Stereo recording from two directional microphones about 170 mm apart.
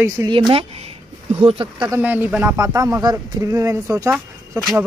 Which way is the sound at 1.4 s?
35° right (ahead or behind).